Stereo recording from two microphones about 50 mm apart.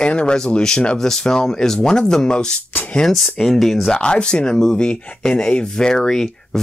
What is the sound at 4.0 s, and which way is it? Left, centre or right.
Speech, centre.